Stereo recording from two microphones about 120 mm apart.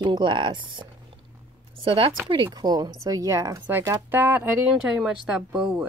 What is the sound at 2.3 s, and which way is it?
A woman's voice, 40° right (ahead or behind).